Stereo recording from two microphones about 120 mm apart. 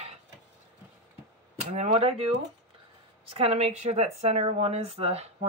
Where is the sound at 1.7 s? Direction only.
60° right (ahead or behind).